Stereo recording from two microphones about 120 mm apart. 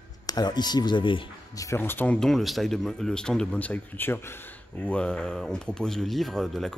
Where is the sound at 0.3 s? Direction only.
35° left (ahead or behind).